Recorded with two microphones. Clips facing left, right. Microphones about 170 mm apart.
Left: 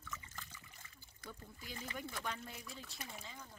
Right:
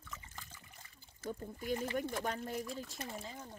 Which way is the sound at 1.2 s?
45° right (ahead or behind).